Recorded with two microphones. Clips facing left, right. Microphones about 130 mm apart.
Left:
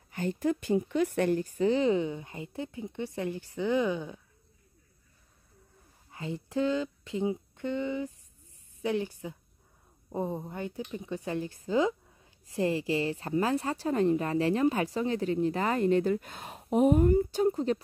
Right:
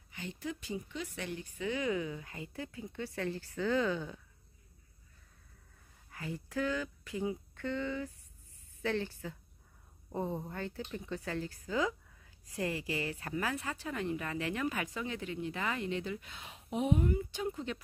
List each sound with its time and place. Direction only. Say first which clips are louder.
0.1 s speech: left 12 dB; 50° left (ahead or behind); by 4.2 s 15° left (ahead or behind)
6.0 s a woman's voice: left 5 dB; 25° left (ahead or behind)